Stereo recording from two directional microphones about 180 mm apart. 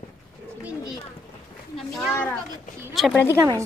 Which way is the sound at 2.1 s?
10° left (ahead or behind).